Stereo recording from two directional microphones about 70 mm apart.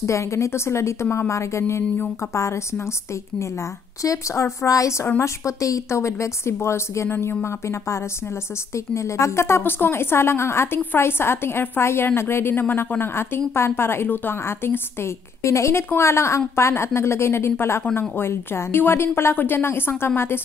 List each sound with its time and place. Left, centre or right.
0.0 s a woman's voice: left
4.0 s a woman's voice: left
15.4 s a woman's voice: left